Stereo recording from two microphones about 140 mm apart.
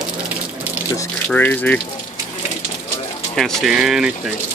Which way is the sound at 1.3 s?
10° left (ahead or behind).